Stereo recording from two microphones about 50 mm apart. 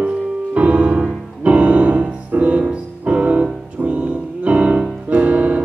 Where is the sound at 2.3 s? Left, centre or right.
Right.